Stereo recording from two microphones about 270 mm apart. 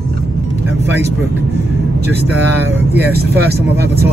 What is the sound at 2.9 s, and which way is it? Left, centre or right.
Speech, right.